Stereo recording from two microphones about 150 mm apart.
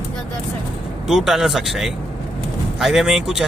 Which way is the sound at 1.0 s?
5° right (ahead or behind).